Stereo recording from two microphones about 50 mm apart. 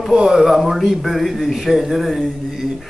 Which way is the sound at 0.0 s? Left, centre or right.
Centre.